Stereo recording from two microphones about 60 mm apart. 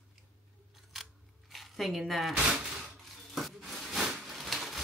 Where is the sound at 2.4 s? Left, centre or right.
Centre.